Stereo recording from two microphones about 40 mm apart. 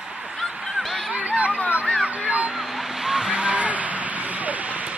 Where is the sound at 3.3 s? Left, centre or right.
Right.